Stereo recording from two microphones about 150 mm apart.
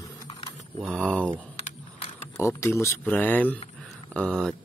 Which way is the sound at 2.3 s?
20° left (ahead or behind).